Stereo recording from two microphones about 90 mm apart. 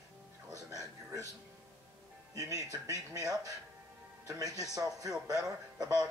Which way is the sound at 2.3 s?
40° right (ahead or behind).